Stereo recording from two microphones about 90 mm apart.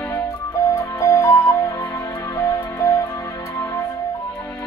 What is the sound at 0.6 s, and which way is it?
Music, 35° left (ahead or behind).